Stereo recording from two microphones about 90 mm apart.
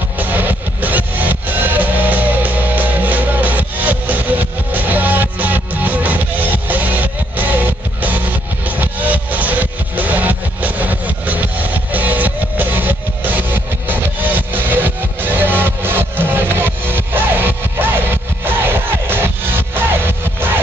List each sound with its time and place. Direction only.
0.2 s music: 20° right (ahead or behind)